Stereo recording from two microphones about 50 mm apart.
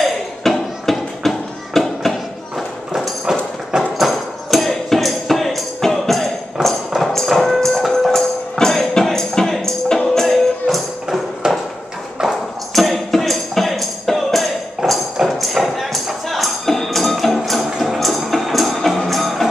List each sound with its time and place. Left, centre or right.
0.0 s a sound: centre
3.3 s clip-clop: centre
4.0 s tambourine: centre
7.2 s music: centre
11.4 s a sound: centre
12.7 s tambourine: centre
14.8 s music: centre